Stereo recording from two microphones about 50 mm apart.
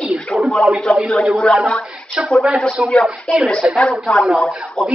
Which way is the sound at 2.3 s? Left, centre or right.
Centre.